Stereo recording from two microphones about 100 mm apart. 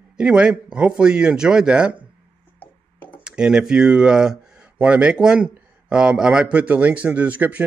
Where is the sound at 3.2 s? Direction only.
10° right (ahead or behind).